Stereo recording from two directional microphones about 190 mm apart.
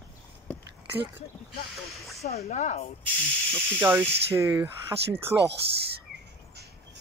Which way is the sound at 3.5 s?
10° right (ahead or behind).